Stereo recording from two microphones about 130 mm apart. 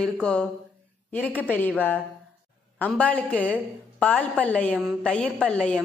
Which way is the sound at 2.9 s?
10° left (ahead or behind).